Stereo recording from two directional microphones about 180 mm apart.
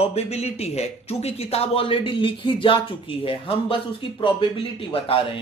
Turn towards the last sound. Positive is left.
turn(degrees=30)  # may be behind; listen again after turning